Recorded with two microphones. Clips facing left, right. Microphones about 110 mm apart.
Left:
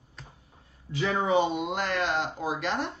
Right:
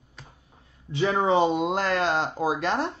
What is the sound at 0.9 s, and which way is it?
Speech, 30° right (ahead or behind).